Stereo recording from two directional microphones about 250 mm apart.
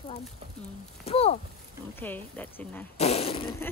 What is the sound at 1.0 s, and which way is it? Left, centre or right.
Fart, left.